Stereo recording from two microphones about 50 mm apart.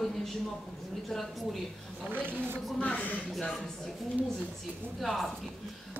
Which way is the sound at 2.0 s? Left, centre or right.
Right.